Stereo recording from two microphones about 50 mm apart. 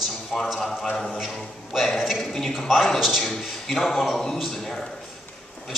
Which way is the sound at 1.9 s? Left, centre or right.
Centre.